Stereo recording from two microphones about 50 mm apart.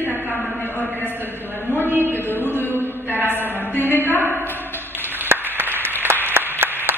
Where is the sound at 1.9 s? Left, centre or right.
Right.